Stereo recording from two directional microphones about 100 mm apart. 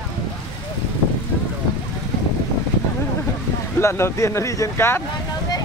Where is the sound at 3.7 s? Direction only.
25° left (ahead or behind).